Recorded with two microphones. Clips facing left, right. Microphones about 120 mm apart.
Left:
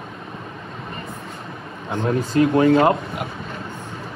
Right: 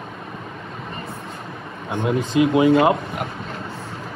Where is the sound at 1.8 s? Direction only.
15° right (ahead or behind).